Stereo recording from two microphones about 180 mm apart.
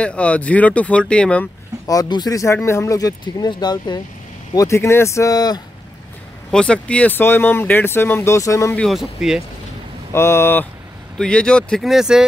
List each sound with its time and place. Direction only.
0.0 s speech: 5° left (ahead or behind)
1.9 s speech: 20° left (ahead or behind)
6.5 s speech: 5° left (ahead or behind)
8.8 s speech: centre (ahead or behind)
10.1 s speech: 15° left (ahead or behind); by 12.3 s 5° right (ahead or behind)